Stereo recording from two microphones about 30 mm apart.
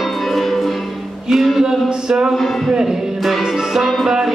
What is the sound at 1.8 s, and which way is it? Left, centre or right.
Music, right.